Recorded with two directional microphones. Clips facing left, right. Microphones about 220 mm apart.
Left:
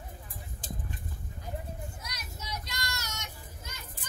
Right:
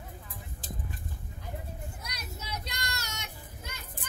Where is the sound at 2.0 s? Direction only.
60° right (ahead or behind).